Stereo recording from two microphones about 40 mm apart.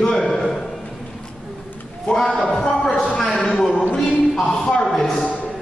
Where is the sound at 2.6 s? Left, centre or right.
Centre.